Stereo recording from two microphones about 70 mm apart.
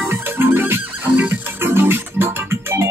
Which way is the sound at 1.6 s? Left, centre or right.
Right.